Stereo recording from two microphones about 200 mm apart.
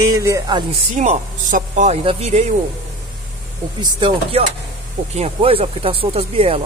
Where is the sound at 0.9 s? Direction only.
35° right (ahead or behind).